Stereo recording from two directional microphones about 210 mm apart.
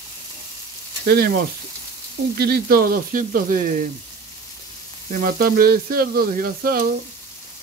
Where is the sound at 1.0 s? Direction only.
50° right (ahead or behind).